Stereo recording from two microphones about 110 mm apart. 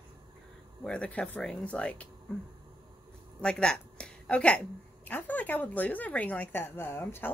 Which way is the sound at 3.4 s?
10° left (ahead or behind).